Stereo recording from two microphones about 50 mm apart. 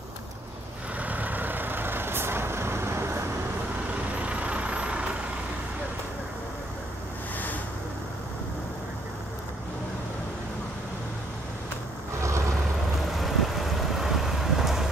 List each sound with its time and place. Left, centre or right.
0.9 s vehicle: right
4.2 s vehicle: right
12.2 s vehicle: right
13.2 s vehicle: centre